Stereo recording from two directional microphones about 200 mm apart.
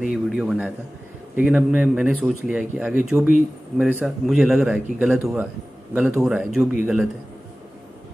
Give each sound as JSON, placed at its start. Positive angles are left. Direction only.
{"t": 0.0, "sound": "speech", "side_deg": -5}